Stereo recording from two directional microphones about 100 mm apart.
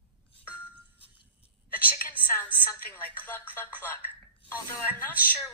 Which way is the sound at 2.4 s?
15° left (ahead or behind).